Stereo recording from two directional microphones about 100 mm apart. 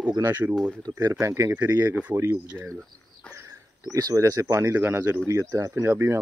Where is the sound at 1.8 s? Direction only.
20° right (ahead or behind).